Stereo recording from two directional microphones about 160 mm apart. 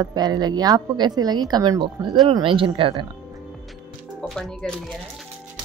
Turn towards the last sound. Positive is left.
turn(degrees=5)  # may be behind; listen again after turning